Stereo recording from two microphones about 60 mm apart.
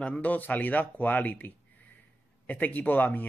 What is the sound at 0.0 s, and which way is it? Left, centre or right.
Speech, left.